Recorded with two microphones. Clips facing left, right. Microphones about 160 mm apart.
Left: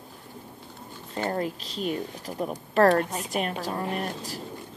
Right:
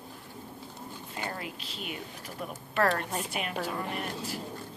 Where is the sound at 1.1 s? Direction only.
40° left (ahead or behind).